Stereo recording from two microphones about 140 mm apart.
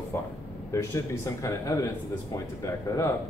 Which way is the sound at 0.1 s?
15° left (ahead or behind).